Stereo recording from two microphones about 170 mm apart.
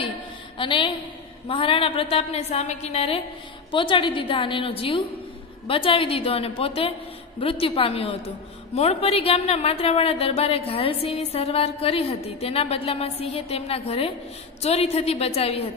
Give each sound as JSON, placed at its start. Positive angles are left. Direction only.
{"t": 0.6, "sound": "a woman's voice", "side_deg": 30}